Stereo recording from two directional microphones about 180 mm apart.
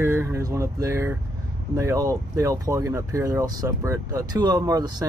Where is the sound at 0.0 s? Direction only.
15° right (ahead or behind).